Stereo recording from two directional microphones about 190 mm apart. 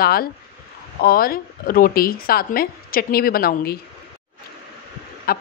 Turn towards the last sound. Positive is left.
turn(degrees=50)  # may be behind; listen again after turning